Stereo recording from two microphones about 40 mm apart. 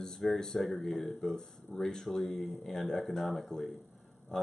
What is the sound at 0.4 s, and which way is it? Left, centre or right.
Speech, centre.